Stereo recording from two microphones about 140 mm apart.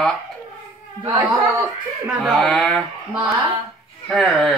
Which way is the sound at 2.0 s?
Centre (ahead or behind).